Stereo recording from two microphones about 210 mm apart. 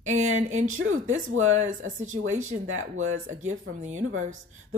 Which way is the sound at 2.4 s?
75° right (ahead or behind).